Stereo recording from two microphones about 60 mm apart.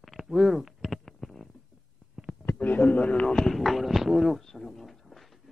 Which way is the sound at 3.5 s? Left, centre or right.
Centre.